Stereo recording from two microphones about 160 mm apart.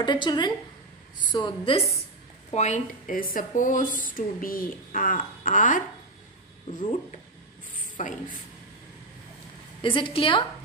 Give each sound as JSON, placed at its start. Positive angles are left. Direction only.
{"t": 0.0, "sound": "a woman's voice", "side_deg": 30}
{"t": 2.5, "sound": "speech", "side_deg": 45}
{"t": 7.7, "sound": "mechanisms", "side_deg": 55}
{"t": 9.8, "sound": "a woman's voice", "side_deg": 30}